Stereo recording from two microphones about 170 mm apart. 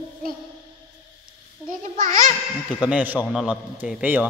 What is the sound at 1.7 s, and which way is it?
Speech, 50° right (ahead or behind).